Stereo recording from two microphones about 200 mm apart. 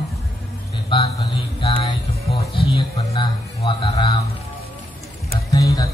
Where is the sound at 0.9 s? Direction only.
25° left (ahead or behind).